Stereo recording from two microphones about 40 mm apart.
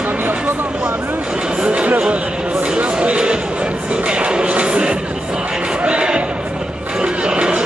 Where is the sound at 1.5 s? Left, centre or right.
Right.